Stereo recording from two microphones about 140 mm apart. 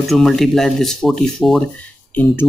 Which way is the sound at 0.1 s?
Centre (ahead or behind).